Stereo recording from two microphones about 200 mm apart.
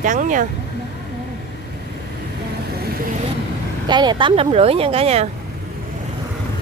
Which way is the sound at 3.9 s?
20° right (ahead or behind).